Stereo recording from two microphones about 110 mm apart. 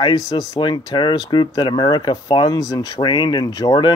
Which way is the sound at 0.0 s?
40° left (ahead or behind).